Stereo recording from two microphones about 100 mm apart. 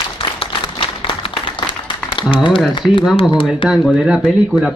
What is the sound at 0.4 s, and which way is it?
Applause, 55° left (ahead or behind).